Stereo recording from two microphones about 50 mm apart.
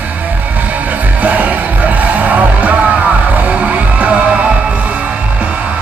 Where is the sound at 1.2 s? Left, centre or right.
Right.